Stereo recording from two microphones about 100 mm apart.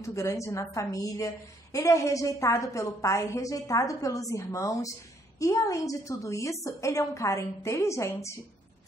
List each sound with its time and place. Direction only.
0.0 s a woman's voice: 30° left (ahead or behind)